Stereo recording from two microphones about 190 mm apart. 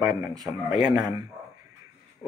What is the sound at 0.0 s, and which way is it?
A man's voice, 20° right (ahead or behind).